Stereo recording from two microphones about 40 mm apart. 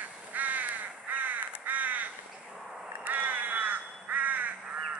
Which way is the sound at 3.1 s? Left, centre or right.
Right.